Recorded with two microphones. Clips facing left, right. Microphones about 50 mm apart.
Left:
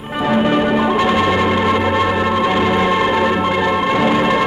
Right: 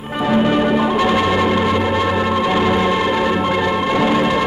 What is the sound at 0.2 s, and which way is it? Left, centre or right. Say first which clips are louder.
Music: even; left.